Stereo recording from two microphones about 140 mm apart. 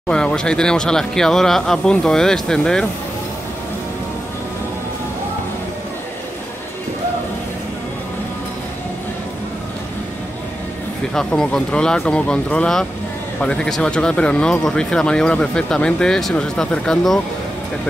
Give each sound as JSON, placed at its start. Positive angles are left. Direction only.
{"t": 0.1, "sound": "speech", "side_deg": 5}
{"t": 11.1, "sound": "speech", "side_deg": 5}